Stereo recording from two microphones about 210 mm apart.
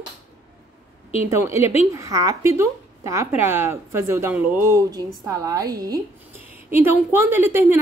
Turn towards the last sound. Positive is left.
turn(degrees=-10)  # may be behind; listen again after turning